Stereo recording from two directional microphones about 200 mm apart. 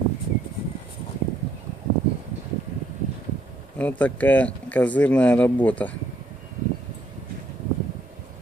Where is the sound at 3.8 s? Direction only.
10° left (ahead or behind).